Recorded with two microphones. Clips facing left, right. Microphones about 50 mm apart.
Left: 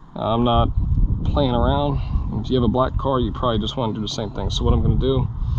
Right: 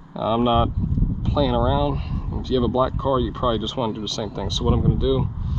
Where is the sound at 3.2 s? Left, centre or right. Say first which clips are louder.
Left 1 dB; right.